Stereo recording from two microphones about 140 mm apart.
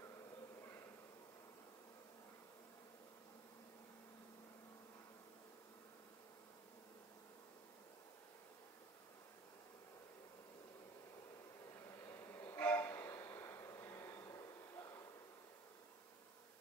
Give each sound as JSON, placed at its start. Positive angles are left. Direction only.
{"t": 12.0, "sound": "train", "side_deg": 20}